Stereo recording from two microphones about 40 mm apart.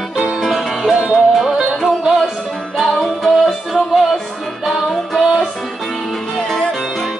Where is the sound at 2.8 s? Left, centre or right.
Centre.